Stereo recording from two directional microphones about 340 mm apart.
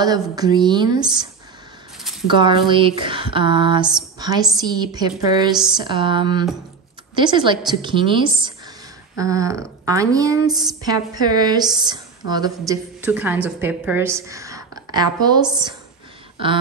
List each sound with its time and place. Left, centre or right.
0.0 s a woman's voice: centre
2.2 s a woman's voice: centre